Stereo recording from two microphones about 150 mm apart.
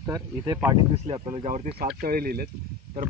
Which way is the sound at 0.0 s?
20° right (ahead or behind).